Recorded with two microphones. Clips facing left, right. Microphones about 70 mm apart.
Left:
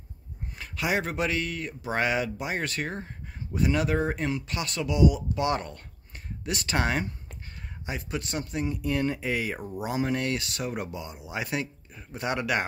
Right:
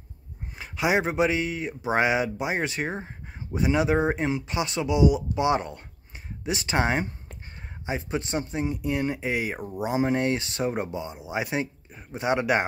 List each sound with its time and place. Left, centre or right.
0.6 s speech: centre